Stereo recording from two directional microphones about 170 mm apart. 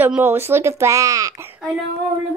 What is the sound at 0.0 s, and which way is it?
A woman's voice, 10° right (ahead or behind).